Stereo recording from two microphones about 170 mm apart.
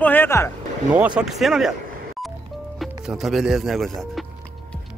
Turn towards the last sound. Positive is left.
turn(degrees=0)  # may be behind; listen again after turning